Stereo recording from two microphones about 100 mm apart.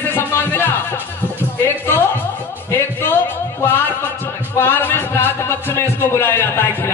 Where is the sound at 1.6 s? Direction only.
25° left (ahead or behind).